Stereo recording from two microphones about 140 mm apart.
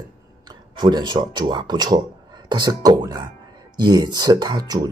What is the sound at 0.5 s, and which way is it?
Speech, 30° right (ahead or behind).